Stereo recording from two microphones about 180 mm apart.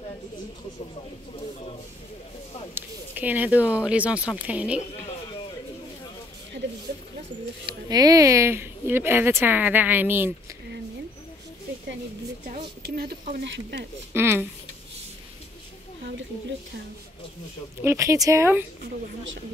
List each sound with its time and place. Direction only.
2.7 s speech: 10° right (ahead or behind)
7.6 s speech: 20° right (ahead or behind)
12.8 s speech: 60° right (ahead or behind)
14.1 s speech: 10° right (ahead or behind)
17.8 s speech: 15° right (ahead or behind)